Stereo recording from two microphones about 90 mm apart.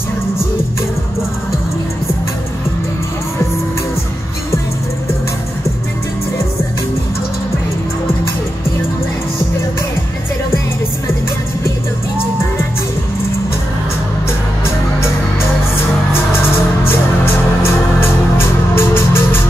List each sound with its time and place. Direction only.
18.8 s music: 25° left (ahead or behind)